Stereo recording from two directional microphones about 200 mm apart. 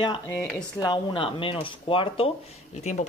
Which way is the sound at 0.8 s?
25° left (ahead or behind).